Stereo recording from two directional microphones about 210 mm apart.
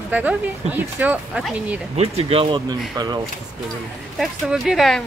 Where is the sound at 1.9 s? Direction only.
30° right (ahead or behind).